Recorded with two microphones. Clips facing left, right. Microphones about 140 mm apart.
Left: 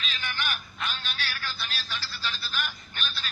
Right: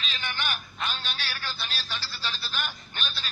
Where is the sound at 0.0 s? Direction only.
30° right (ahead or behind).